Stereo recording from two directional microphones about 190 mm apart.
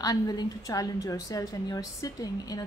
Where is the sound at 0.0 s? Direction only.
20° left (ahead or behind).